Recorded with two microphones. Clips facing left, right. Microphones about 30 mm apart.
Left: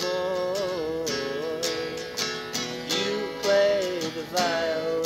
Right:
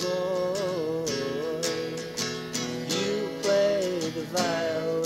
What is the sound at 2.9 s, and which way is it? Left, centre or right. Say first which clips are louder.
Music: left 1 dB; left.